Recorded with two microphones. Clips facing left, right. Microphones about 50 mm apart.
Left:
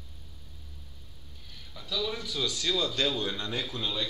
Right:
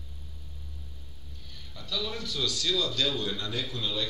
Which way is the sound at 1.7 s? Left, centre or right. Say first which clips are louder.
Left 1 dB; centre.